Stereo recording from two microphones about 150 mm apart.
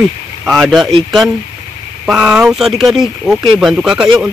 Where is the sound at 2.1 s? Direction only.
5° right (ahead or behind).